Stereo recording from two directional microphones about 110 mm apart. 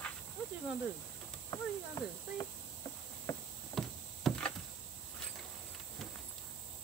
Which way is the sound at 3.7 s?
5° left (ahead or behind).